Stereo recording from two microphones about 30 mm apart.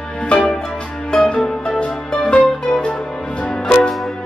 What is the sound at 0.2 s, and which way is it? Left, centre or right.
Music, left.